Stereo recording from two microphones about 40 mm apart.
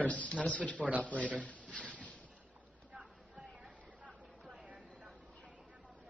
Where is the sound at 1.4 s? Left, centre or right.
Left.